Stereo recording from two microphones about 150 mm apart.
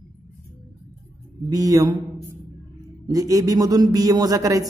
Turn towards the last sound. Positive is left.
turn(degrees=-25)  # may be behind; listen again after turning